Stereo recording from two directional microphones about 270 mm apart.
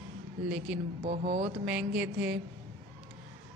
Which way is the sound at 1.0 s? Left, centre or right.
Right.